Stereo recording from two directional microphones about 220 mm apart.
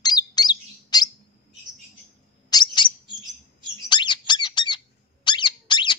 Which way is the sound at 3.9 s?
20° left (ahead or behind).